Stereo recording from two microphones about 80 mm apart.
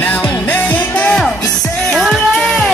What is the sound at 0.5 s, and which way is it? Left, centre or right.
Music, left.